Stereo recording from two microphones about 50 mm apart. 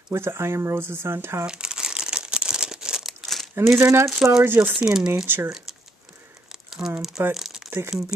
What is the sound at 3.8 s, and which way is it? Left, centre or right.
Speech, right.